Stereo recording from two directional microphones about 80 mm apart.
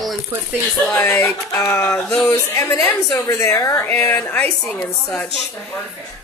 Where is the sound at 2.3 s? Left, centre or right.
Left.